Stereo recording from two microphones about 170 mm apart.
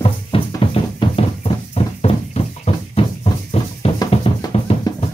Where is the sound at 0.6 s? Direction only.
35° left (ahead or behind).